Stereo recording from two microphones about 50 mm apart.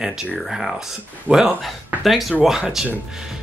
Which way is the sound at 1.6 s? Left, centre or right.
Centre.